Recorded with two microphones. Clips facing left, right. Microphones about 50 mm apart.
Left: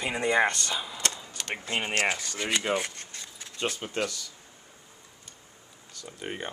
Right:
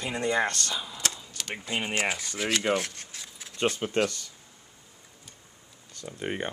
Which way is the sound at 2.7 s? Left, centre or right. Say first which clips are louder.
Even; centre.